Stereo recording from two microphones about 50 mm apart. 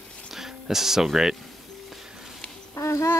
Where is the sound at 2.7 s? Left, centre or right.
Left.